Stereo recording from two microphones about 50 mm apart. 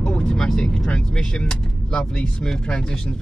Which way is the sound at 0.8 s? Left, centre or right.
Left.